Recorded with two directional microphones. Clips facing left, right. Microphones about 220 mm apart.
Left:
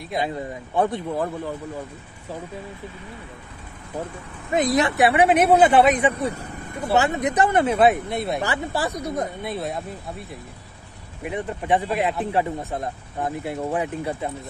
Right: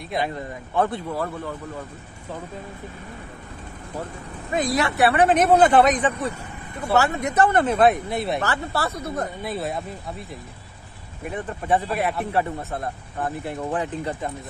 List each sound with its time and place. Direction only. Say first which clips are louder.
0.2 s speech: left 3 dB; 15° left (ahead or behind)
4.5 s speech: left 3 dB; 20° left (ahead or behind)
6.1 s vehicle: left 2 dB; 35° left (ahead or behind)
6.9 s speech: left 1 dB; 20° left (ahead or behind); by 8.4 s centre (ahead or behind)
8.4 s speech: left 1 dB; 15° left (ahead or behind)
9.4 s speech: even; centre (ahead or behind)
11.2 s speech: left 1 dB; 15° left (ahead or behind)